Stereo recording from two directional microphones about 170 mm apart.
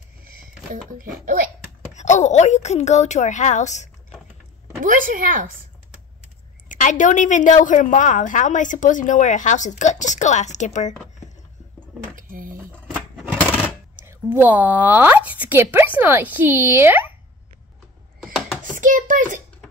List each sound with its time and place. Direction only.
0.9 s a child's voice: 55° right (ahead or behind)
2.0 s speech: 45° left (ahead or behind)
4.8 s speech: 50° right (ahead or behind)
6.7 s a woman's voice: 50° left (ahead or behind)
12.2 s a sound: 55° right (ahead or behind)
12.9 s vehicle: 5° right (ahead or behind)
14.0 s speech: 10° right (ahead or behind)
18.2 s mechanisms: centre (ahead or behind)
18.6 s a sound: 50° right (ahead or behind)